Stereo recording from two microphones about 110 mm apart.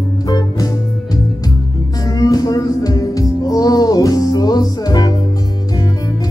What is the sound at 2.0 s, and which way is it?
Music, 30° left (ahead or behind).